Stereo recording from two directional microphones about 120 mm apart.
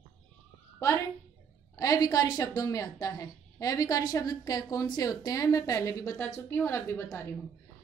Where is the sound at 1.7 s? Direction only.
30° left (ahead or behind).